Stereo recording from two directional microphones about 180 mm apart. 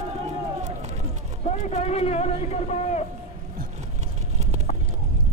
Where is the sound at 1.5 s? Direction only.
40° left (ahead or behind).